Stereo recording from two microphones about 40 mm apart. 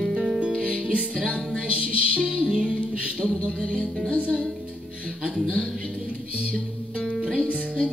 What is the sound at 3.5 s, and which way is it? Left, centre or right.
Music, left.